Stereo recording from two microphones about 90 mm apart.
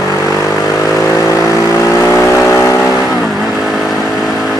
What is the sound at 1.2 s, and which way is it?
Vehicle, 35° left (ahead or behind).